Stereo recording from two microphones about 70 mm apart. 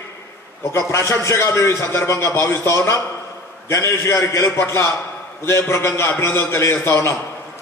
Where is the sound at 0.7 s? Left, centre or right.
Left.